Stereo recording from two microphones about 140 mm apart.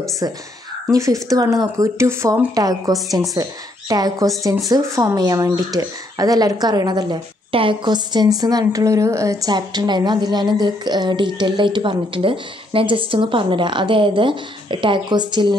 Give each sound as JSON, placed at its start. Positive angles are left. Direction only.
{"t": 0.8, "sound": "speech", "side_deg": -20}